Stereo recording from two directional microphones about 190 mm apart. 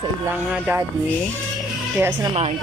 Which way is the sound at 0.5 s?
10° right (ahead or behind).